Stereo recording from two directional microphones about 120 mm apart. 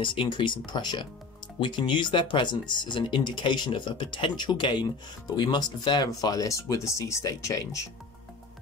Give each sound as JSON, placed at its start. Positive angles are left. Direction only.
{"t": 0.0, "sound": "speech", "side_deg": 45}